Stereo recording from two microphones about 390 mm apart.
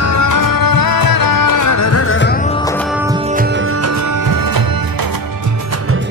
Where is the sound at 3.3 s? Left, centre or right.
Right.